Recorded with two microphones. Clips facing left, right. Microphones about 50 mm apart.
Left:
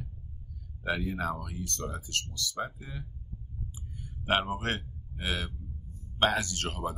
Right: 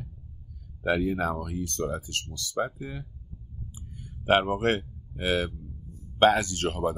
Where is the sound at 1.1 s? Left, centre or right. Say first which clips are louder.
Right 5 dB; right.